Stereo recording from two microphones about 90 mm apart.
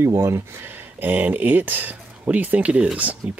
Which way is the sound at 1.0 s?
20° right (ahead or behind).